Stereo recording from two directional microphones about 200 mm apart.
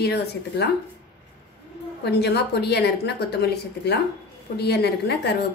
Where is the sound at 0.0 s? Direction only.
55° left (ahead or behind).